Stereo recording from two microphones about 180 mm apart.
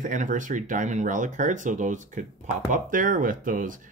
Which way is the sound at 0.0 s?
45° right (ahead or behind).